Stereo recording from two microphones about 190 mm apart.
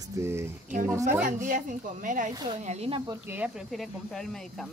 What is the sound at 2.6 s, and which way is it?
Speech, 35° right (ahead or behind).